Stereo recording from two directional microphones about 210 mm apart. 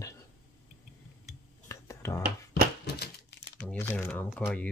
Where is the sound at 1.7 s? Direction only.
15° left (ahead or behind).